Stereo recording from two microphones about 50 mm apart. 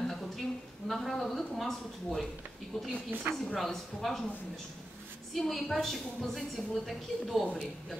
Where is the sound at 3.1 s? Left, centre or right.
Right.